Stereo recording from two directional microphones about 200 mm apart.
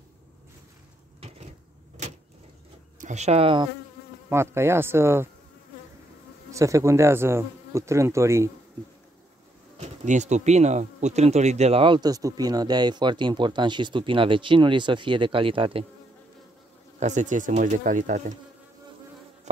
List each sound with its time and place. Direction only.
3.0 s speech: 35° right (ahead or behind)
4.3 s speech: 15° right (ahead or behind)
6.5 s speech: 15° right (ahead or behind)
9.8 s speech: 35° right (ahead or behind)
17.0 s speech: 35° right (ahead or behind)